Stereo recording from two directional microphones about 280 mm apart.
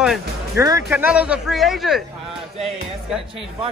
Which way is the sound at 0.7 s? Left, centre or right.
Centre.